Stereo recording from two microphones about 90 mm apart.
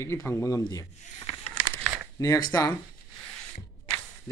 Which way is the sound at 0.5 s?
40° left (ahead or behind).